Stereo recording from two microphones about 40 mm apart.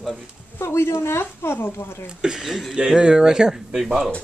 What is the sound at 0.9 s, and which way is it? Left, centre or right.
Speech, left.